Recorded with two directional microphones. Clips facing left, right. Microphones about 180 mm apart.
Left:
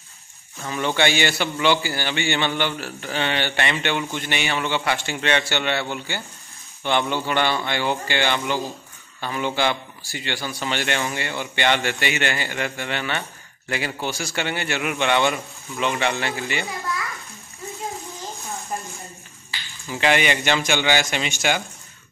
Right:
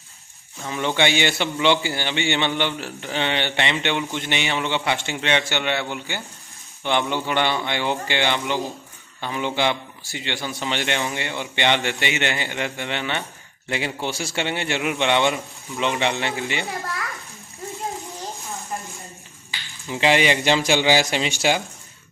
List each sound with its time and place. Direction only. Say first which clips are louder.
0.7 s a man's voice: even; 15° right (ahead or behind)
19.9 s a man's voice: right 2 dB; 25° right (ahead or behind)